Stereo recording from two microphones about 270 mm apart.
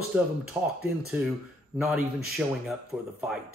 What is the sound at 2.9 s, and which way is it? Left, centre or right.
Speech, centre.